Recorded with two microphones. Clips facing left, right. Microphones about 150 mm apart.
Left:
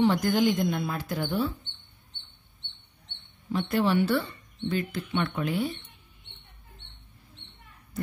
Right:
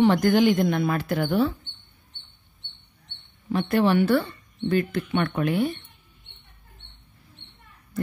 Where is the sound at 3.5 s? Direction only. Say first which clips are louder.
Right 4 dB; 60° right (ahead or behind).